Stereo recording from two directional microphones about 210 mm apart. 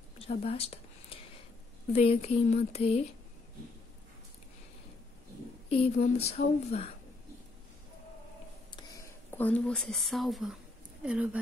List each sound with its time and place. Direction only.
0.3 s a sound: 30° left (ahead or behind)
1.9 s speech: 30° left (ahead or behind)
5.7 s speech: 30° left (ahead or behind)
9.3 s speech: 5° left (ahead or behind)